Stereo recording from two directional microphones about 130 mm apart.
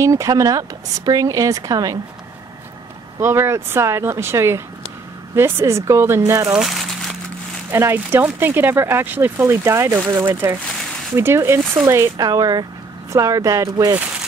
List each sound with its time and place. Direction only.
0.0 s speech: 25° right (ahead or behind)
3.2 s speech: 20° right (ahead or behind)
6.5 s crumpling: centre (ahead or behind)
7.7 s speech: 20° right (ahead or behind)